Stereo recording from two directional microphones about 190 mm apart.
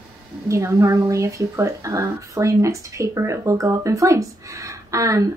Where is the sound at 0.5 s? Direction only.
15° right (ahead or behind).